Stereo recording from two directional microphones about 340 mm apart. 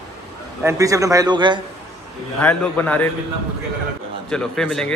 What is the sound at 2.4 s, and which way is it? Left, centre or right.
Speech, centre.